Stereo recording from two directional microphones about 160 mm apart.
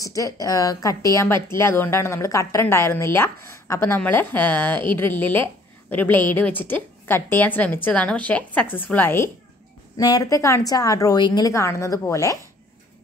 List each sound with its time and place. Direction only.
0.0 s a woman's voice: 20° left (ahead or behind)